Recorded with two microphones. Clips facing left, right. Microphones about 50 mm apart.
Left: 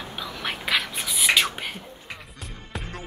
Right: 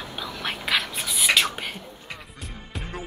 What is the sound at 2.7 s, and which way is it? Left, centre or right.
Music, centre.